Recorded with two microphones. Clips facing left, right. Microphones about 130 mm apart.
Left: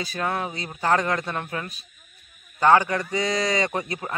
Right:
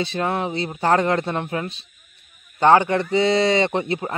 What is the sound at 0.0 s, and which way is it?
Speech, 25° right (ahead or behind).